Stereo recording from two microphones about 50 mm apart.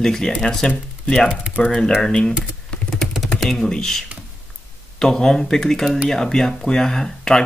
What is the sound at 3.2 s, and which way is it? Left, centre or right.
Speech, centre.